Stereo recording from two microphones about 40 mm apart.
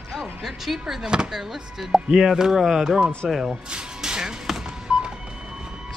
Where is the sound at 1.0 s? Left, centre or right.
Centre.